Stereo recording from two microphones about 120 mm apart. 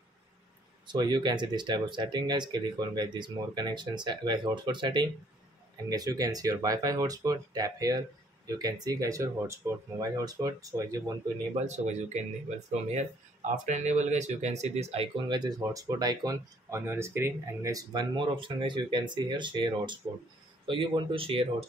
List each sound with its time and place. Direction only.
0.8 s speech: 40° right (ahead or behind)
11.6 s speech: 75° right (ahead or behind); by 15.0 s 60° right (ahead or behind)
15.1 s speech: 40° right (ahead or behind)
18.1 s speech: 45° right (ahead or behind)